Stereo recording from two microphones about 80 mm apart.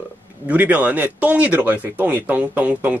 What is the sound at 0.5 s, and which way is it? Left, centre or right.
A man's voice, centre.